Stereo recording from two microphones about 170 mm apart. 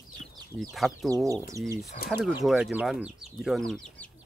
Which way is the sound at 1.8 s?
65° left (ahead or behind).